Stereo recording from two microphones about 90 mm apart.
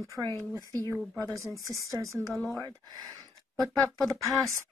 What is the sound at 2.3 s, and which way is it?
Speech, 5° left (ahead or behind).